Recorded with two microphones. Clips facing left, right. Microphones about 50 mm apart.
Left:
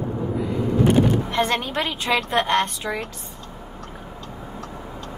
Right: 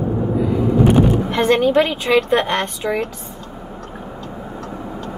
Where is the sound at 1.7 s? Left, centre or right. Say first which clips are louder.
Right 8 dB; right.